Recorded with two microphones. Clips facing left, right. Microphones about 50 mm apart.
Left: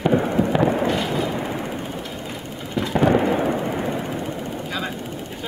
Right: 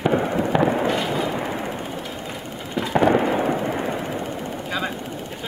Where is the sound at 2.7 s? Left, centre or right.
Centre.